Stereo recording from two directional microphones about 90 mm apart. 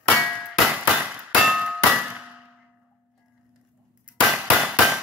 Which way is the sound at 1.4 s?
10° right (ahead or behind).